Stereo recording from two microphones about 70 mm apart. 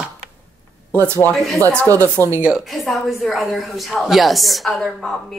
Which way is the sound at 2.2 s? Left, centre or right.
Left.